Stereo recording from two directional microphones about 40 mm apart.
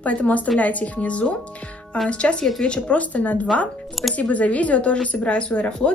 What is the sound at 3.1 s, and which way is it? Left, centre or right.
A woman's voice, left.